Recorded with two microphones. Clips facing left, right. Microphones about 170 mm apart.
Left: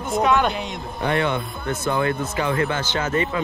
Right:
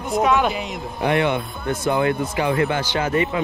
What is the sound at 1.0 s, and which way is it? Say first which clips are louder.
Speech: right 2 dB; 20° right (ahead or behind).